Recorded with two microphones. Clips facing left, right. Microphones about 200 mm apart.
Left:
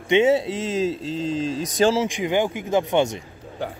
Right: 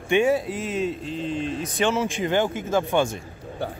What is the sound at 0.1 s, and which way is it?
A man's voice, 20° left (ahead or behind).